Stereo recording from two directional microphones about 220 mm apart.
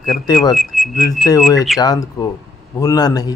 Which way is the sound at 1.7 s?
15° left (ahead or behind).